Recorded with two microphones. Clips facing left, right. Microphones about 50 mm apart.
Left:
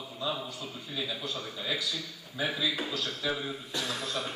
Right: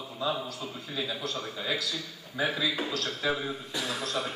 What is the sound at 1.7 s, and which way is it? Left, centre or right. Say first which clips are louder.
A man's voice: right 1 dB; centre.